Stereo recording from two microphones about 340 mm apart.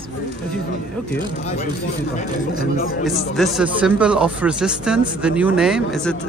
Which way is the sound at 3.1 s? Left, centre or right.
Centre.